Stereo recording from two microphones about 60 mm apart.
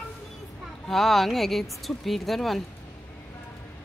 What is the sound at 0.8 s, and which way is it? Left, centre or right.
Speech, centre.